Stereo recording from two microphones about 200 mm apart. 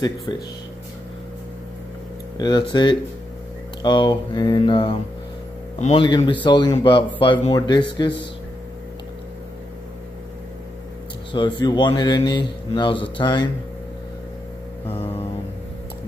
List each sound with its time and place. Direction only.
0.3 s speech: 15° left (ahead or behind)
2.3 s mantra: 20° left (ahead or behind)
5.8 s speech: 35° left (ahead or behind)
6.0 s mantra: 25° left (ahead or behind)
11.3 s mantra: 20° left (ahead or behind)